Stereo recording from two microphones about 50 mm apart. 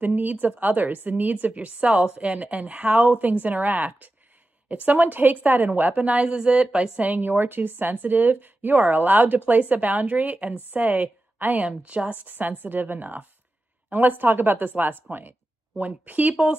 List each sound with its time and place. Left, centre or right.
0.0 s a woman's voice: right
7.0 s a woman's voice: right
11.8 s a woman's voice: right